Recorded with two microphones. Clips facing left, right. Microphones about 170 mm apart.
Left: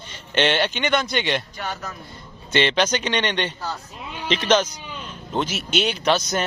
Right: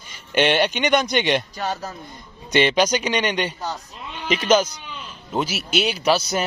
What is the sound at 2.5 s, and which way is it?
A man's voice, 10° right (ahead or behind).